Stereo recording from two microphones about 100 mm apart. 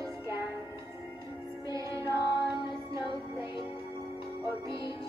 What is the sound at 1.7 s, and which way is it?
Music, 30° right (ahead or behind).